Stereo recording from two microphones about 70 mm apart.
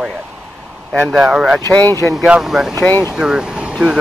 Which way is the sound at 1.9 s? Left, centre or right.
Left.